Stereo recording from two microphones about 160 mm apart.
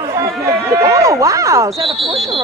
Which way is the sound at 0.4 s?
15° right (ahead or behind).